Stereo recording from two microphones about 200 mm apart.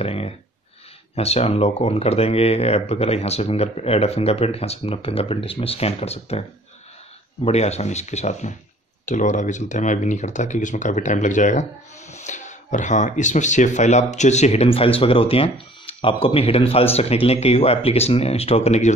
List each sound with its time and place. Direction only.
0.0 s a sound: 30° left (ahead or behind)
1.1 s speech: 30° left (ahead or behind)
7.4 s speech: 30° left (ahead or behind)